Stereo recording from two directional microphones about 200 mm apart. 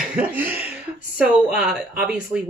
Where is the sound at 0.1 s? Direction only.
10° right (ahead or behind).